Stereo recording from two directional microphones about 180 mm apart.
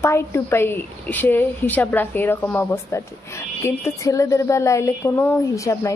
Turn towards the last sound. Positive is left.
turn(degrees=15)  # may be behind; listen again after turning